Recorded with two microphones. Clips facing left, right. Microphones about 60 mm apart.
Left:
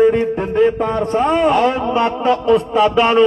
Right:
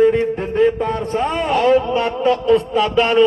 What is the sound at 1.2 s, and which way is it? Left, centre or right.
Speech, centre.